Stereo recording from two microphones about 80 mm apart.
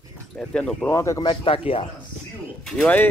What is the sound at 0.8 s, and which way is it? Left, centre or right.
Speech, left.